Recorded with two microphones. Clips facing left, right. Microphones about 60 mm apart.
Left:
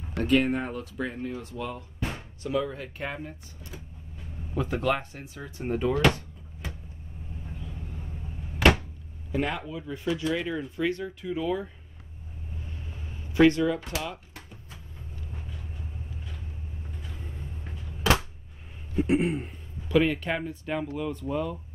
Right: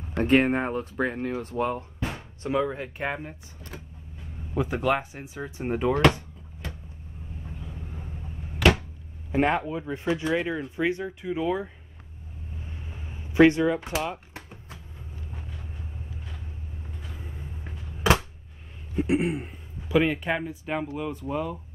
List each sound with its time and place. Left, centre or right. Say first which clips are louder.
0.2 s speech: right 3 dB; right
2.0 s music: right 1 dB; centre
2.4 s speech: right 3 dB; right
3.7 s vehicle: right 3 dB; right
4.6 s speech: right 2 dB; centre
9.3 s speech: right 6 dB; right
13.3 s speech: right 2 dB; right
17.2 s a sound: even; centre
18.9 s speech: even; centre